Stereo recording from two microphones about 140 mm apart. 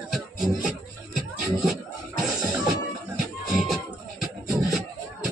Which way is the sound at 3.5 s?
Centre (ahead or behind).